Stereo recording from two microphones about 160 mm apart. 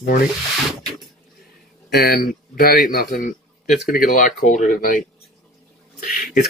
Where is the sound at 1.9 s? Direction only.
75° left (ahead or behind).